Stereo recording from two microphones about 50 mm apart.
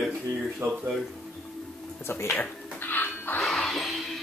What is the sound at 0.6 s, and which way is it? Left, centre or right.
Speech, right.